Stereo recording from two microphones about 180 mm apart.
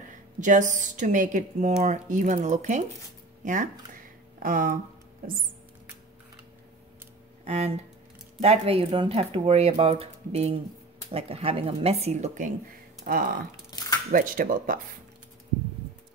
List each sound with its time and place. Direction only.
0.4 s a woman's voice: 45° right (ahead or behind)
7.4 s a sound: 35° right (ahead or behind)
8.4 s speech: 30° right (ahead or behind)
13.0 s a woman's voice: 50° right (ahead or behind)
13.7 s a sound: 20° left (ahead or behind)
14.1 s a woman's voice: 50° right (ahead or behind)